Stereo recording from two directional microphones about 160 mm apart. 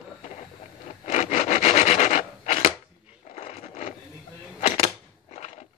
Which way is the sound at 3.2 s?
45° left (ahead or behind).